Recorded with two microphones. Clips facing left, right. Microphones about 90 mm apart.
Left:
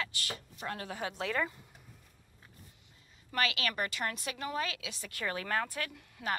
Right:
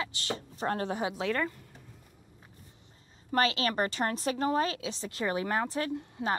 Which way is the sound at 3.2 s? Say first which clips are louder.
Right 6 dB; 35° right (ahead or behind).